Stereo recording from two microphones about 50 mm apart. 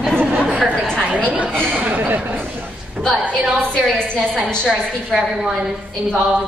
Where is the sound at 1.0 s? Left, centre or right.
Right.